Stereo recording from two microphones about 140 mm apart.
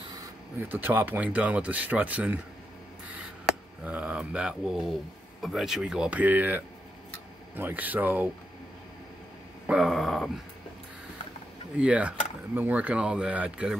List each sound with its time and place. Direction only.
0.6 s speech: 15° right (ahead or behind)
9.7 s speech: 5° right (ahead or behind)
11.8 s speech: 10° right (ahead or behind)